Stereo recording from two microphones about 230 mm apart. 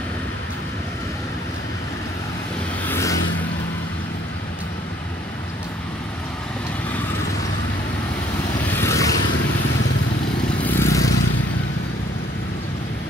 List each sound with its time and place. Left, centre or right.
2.9 s vehicle: centre
8.6 s vehicle: centre
10.6 s vehicle: centre